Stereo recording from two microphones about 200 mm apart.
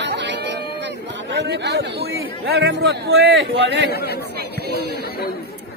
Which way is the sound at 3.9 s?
55° left (ahead or behind).